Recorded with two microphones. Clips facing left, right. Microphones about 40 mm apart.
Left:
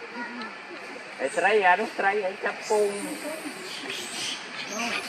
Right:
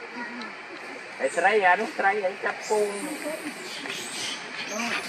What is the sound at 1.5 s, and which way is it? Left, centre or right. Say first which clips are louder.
Speech: even; centre.